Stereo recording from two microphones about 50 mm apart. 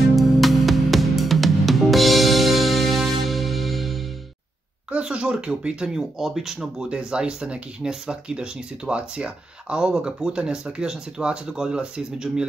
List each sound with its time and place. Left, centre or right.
0.1 s music: centre
5.0 s speech: centre
6.9 s speech: centre